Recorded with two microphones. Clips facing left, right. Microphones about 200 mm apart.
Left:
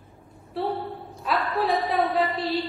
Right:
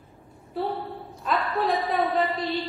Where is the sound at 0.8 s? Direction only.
Centre (ahead or behind).